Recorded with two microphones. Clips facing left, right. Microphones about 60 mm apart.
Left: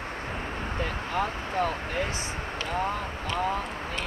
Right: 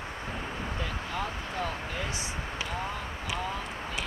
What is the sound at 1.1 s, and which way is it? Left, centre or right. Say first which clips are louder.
Speech: left 7 dB; left.